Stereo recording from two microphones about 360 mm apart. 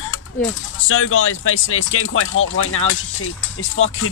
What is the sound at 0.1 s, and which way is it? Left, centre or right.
Speech, left.